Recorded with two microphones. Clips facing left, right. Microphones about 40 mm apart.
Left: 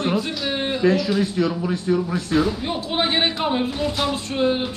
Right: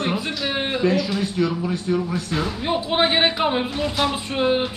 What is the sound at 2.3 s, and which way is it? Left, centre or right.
Speech, centre.